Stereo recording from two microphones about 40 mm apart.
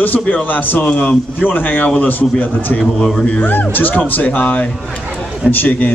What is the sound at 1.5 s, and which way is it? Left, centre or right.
Speech, left.